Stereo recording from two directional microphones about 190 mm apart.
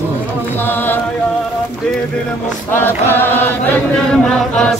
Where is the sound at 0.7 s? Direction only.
10° left (ahead or behind).